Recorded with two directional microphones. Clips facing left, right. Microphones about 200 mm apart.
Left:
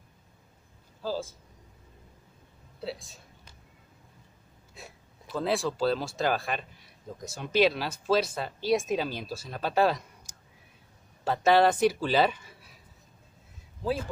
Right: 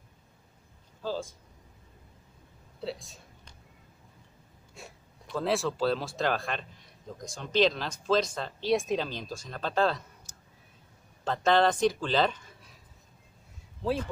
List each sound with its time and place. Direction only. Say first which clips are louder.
1.0 s a man's voice: left 1 dB; 5° left (ahead or behind)
2.8 s a sound: even; centre (ahead or behind)
4.7 s a man's voice: even; centre (ahead or behind)